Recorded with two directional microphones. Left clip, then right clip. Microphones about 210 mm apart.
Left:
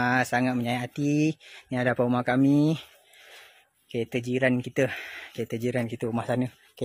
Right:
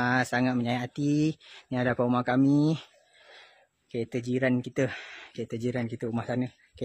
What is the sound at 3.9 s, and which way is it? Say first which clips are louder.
Speech: left 2 dB; 10° left (ahead or behind).